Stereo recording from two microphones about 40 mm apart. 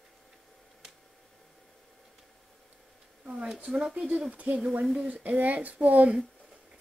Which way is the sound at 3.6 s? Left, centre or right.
Right.